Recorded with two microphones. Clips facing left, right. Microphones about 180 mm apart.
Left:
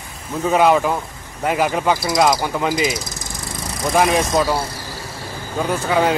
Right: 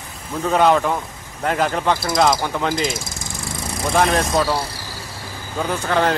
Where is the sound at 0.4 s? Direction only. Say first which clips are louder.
Left 1 dB; 5° left (ahead or behind).